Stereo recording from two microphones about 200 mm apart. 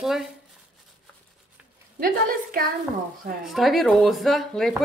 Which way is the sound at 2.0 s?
45° right (ahead or behind).